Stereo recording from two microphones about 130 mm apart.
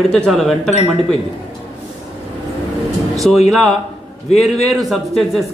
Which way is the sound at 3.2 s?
Centre (ahead or behind).